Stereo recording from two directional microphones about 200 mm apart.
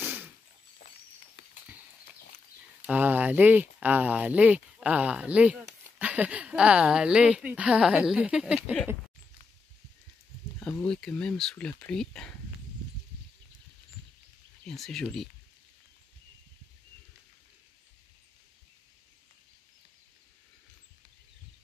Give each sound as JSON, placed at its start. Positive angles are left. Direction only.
{"t": 0.0, "sound": "a sound", "side_deg": -10}
{"t": 2.9, "sound": "speech", "side_deg": -10}
{"t": 10.6, "sound": "speech", "side_deg": 5}
{"t": 14.7, "sound": "speech", "side_deg": 0}